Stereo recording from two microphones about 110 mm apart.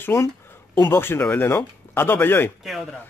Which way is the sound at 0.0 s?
25° left (ahead or behind).